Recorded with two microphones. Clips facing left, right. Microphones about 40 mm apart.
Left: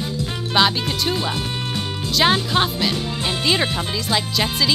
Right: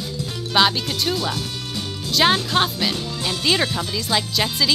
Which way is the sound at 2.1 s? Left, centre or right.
Centre.